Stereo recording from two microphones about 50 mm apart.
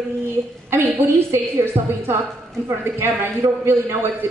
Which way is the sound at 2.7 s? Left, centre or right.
Right.